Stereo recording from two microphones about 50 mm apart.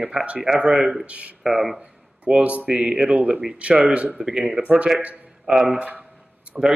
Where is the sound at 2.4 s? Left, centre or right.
Right.